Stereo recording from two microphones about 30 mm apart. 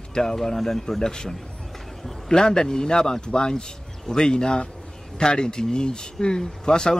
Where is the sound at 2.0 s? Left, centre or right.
Centre.